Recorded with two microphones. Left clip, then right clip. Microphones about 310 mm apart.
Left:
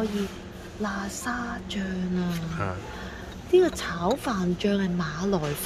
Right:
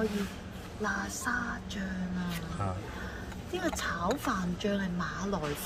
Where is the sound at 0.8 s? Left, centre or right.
Left.